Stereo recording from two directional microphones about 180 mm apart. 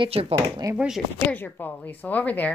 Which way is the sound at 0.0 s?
30° right (ahead or behind).